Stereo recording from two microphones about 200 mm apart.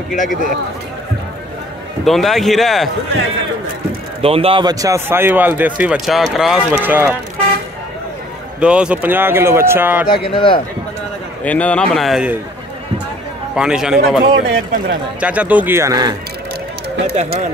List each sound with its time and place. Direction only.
0.1 s a man's voice: 40° left (ahead or behind)
2.0 s a man's voice: centre (ahead or behind)
4.2 s speech: 30° right (ahead or behind); by 7.2 s 10° right (ahead or behind)
8.5 s speech: 5° right (ahead or behind)
10.0 s speech: 50° left (ahead or behind)
10.3 s speech: 25° left (ahead or behind)
11.4 s a man's voice: 5° left (ahead or behind)
13.6 s a man's voice: 5° right (ahead or behind)
14.3 s a man's voice: 55° right (ahead or behind)
15.1 s speech: 5° right (ahead or behind)